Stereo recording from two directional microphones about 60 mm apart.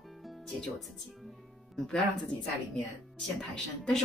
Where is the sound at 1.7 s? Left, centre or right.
Centre.